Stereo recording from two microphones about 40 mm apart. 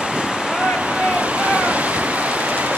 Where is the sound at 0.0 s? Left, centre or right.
Right.